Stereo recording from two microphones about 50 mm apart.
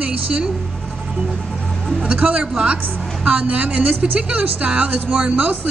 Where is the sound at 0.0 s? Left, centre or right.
Right.